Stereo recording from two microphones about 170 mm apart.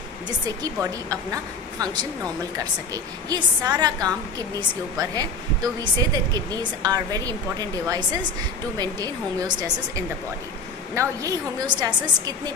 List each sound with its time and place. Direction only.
0.6 s a woman's voice: 20° right (ahead or behind)
11.0 s a woman's voice: 20° right (ahead or behind)